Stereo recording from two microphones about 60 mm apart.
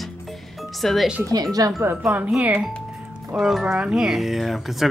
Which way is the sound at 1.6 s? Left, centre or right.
Right.